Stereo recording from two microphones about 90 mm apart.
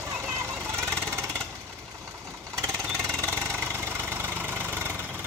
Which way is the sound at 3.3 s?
25° right (ahead or behind).